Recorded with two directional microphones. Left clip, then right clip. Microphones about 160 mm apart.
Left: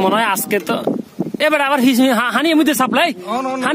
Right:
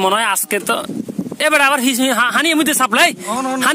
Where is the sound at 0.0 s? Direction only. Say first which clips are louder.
Even; centre (ahead or behind).